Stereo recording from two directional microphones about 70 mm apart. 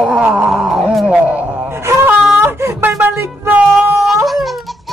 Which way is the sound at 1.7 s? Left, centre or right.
Right.